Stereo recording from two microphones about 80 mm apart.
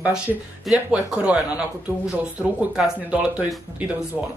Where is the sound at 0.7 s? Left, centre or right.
Centre.